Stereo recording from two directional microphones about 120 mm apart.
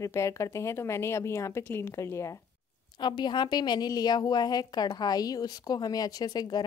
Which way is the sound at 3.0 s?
40° left (ahead or behind).